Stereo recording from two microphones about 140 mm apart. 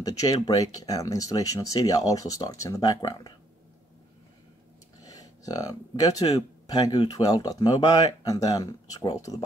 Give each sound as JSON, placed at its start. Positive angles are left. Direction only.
{"t": 0.0, "sound": "speech", "side_deg": 25}
{"t": 5.0, "sound": "speech", "side_deg": 25}